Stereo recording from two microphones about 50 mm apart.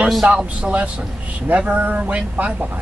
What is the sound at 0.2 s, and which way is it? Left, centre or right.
A man's voice, right.